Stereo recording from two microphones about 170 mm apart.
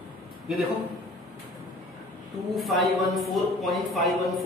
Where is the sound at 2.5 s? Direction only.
Centre (ahead or behind).